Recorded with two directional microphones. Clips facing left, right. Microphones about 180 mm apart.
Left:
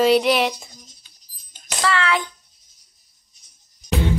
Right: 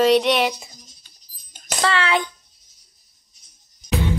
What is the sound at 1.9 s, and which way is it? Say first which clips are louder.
Speech: even; 25° right (ahead or behind).